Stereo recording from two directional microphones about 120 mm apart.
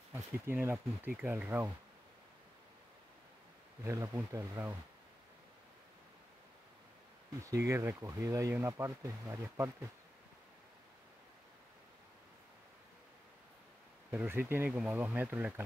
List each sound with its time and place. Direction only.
0.1 s speech: 20° right (ahead or behind)
3.8 s speech: 25° right (ahead or behind)
7.4 s speech: 25° right (ahead or behind)
14.1 s speech: 15° right (ahead or behind)